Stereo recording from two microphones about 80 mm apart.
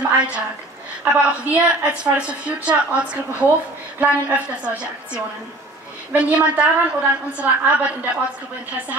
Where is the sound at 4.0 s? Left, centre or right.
Centre.